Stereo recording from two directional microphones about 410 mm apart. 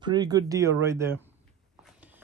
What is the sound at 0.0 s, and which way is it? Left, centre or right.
Speech, centre.